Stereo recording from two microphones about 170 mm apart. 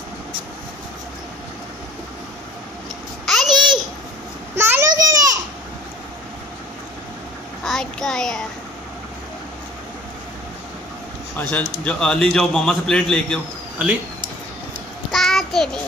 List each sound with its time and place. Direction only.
3.3 s babbling: centre (ahead or behind)
4.6 s a sound: 15° right (ahead or behind)
7.6 s child singing: centre (ahead or behind)
11.3 s a man's voice: 10° left (ahead or behind)
15.0 s child singing: centre (ahead or behind)